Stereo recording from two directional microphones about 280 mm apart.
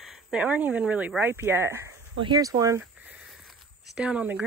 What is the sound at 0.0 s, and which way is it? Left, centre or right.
Speech, centre.